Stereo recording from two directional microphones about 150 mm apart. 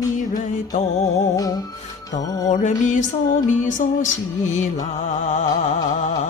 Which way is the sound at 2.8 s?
55° left (ahead or behind).